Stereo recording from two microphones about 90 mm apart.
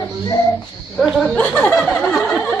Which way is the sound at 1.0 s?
5° right (ahead or behind).